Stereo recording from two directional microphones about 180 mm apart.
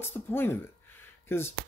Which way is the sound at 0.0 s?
10° left (ahead or behind).